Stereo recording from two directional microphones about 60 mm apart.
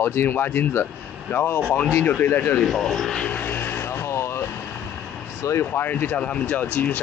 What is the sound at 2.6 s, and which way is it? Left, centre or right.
Speech, centre.